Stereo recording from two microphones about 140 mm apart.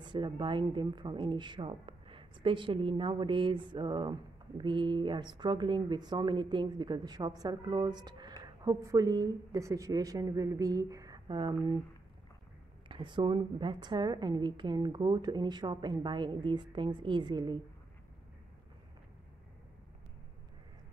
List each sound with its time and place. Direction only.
0.0 s speech: 35° right (ahead or behind)
12.8 s speech: 35° right (ahead or behind)